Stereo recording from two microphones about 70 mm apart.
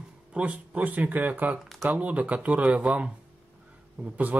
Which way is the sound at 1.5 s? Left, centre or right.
Centre.